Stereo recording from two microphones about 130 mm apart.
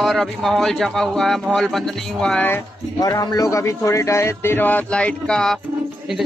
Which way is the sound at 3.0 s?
30° left (ahead or behind).